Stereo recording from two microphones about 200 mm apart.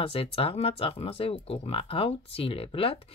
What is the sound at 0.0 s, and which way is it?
Speech, 30° left (ahead or behind).